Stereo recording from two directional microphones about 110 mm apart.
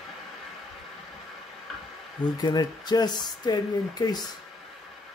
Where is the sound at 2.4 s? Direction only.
40° left (ahead or behind).